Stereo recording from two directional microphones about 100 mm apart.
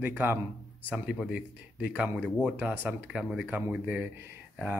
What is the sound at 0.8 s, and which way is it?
A man's voice, 10° right (ahead or behind).